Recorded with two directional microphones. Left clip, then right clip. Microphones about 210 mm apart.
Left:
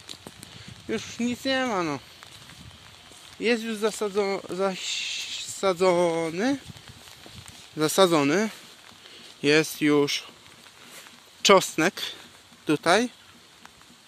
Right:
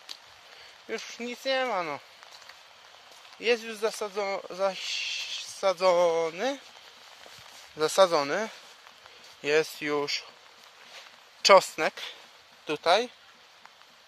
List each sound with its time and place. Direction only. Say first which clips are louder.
0.8 s speech: left 5 dB; 5° right (ahead or behind)
3.3 s speech: left 2 dB; 10° right (ahead or behind)
7.7 s speech: left 2 dB; 10° right (ahead or behind)
11.7 s speech: left 4 dB; centre (ahead or behind)